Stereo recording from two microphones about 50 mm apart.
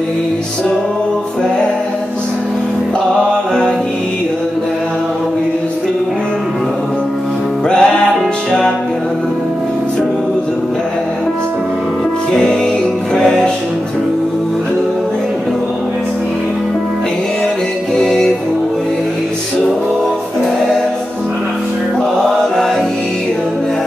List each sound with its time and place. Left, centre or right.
3.3 s music: centre
7.7 s music: centre
18.0 s music: centre